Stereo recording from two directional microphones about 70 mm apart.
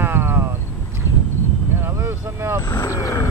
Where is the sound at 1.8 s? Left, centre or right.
Right.